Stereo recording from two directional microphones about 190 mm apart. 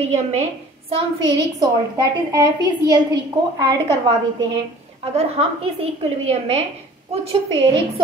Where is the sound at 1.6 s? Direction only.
20° right (ahead or behind).